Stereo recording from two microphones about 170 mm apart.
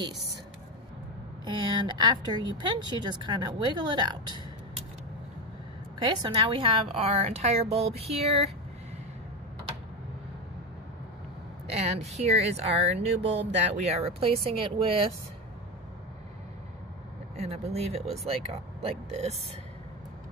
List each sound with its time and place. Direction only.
1.4 s speech: 25° right (ahead or behind)
6.0 s a woman's voice: 25° right (ahead or behind)
11.7 s a woman's voice: 40° right (ahead or behind)
17.4 s a woman's voice: 40° right (ahead or behind)